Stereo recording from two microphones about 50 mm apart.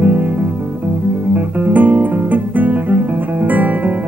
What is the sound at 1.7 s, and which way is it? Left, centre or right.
Guitar, right.